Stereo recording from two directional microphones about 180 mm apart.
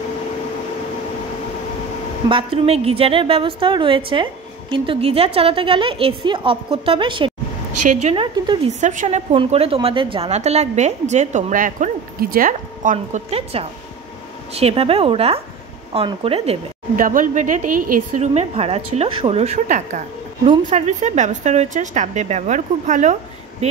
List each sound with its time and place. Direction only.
2.2 s a woman's voice: 30° right (ahead or behind)
7.8 s a woman's voice: 40° right (ahead or behind)
8.8 s a woman's voice: 45° right (ahead or behind)
16.9 s a woman's voice: 50° right (ahead or behind)